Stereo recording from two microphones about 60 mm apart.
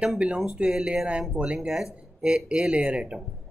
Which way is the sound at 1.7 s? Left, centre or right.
Centre.